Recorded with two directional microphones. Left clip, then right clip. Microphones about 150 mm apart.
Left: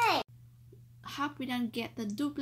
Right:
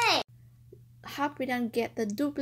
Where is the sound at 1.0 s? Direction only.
25° right (ahead or behind).